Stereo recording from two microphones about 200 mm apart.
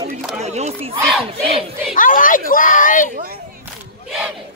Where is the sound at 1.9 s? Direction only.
40° left (ahead or behind).